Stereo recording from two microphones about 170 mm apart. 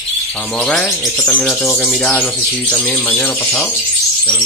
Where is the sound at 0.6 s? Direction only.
5° left (ahead or behind).